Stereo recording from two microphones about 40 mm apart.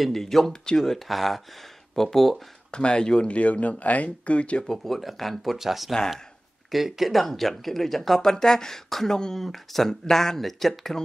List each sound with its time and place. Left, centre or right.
0.1 s speech: centre
2.7 s speech: left
3.3 s speech: left
4.6 s speech: centre